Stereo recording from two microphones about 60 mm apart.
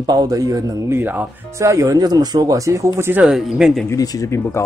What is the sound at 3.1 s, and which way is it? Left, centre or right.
Speech, right.